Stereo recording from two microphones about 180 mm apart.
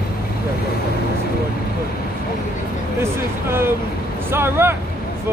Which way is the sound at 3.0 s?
15° right (ahead or behind).